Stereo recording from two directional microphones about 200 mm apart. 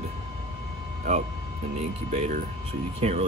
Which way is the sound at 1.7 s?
35° right (ahead or behind).